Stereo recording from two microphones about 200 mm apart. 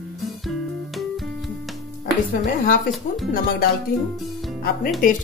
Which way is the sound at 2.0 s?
45° left (ahead or behind).